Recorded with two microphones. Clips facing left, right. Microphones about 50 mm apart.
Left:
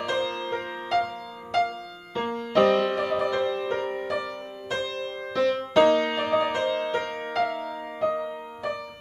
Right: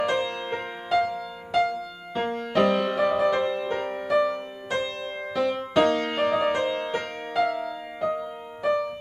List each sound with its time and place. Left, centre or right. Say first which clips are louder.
0.0 s music: right 2 dB; centre
4.6 s music: right 1 dB; centre
5.8 s music: left 2 dB; centre
7.5 s music: right 1 dB; centre